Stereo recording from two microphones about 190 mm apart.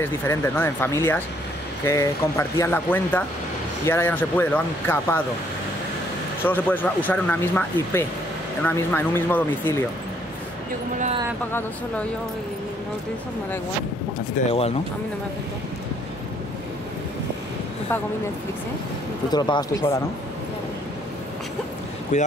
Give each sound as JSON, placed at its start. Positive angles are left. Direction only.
{"t": 0.0, "sound": "speech", "side_deg": 10}
{"t": 6.4, "sound": "speech", "side_deg": 10}
{"t": 14.4, "sound": "speech", "side_deg": 40}
{"t": 19.3, "sound": "speech", "side_deg": 20}
{"t": 22.1, "sound": "speech", "side_deg": 40}